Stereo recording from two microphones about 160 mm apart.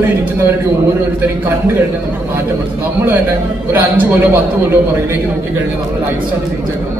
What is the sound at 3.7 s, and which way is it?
Speech, 10° right (ahead or behind).